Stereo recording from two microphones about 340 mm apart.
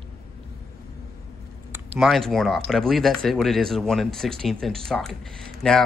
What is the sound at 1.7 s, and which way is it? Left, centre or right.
Speech, centre.